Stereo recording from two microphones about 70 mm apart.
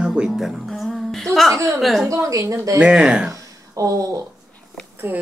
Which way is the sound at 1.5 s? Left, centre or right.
Right.